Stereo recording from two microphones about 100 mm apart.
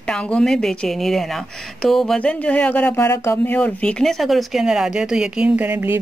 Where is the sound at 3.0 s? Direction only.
25° left (ahead or behind).